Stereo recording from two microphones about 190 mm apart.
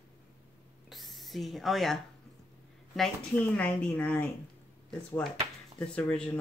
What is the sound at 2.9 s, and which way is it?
Speech, 5° left (ahead or behind).